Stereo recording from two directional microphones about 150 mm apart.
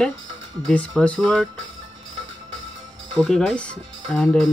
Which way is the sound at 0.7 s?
5° left (ahead or behind).